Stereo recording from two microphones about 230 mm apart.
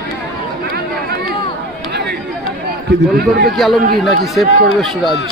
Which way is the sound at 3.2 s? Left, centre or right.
Right.